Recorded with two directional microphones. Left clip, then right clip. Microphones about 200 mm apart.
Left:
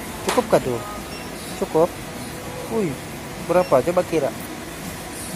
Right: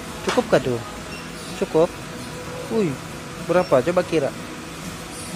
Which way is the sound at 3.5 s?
25° right (ahead or behind).